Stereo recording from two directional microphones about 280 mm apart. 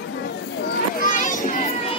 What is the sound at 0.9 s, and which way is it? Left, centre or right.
Children playing, left.